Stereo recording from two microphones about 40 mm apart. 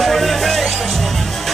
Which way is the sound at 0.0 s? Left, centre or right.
Centre.